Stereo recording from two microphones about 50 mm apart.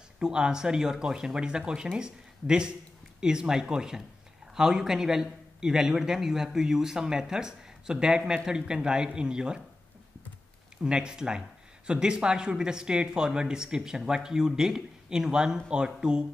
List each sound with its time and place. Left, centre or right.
0.2 s speech: centre
10.8 s speech: centre